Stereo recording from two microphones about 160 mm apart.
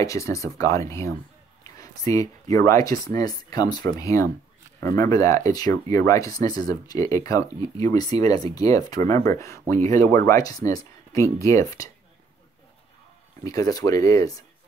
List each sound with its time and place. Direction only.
0.0 s speech: 20° left (ahead or behind)
13.4 s speech: 20° left (ahead or behind)